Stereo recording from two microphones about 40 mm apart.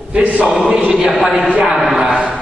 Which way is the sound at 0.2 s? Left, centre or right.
Right.